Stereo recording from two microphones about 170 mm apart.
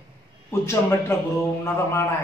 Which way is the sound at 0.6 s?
15° left (ahead or behind).